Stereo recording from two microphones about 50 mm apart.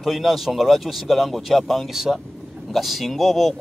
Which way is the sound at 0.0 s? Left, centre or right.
Centre.